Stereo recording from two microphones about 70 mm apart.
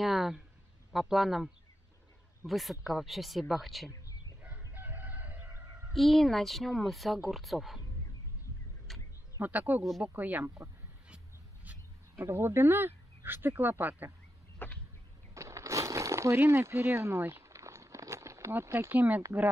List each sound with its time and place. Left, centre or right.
0.0 s speech: centre
4.4 s chicken: right
5.9 s speech: centre
8.9 s a sound: centre
9.4 s speech: right
12.2 s speech: right
14.6 s a sound: left
15.3 s a sound: right
18.5 s speech: right
18.9 s speech: right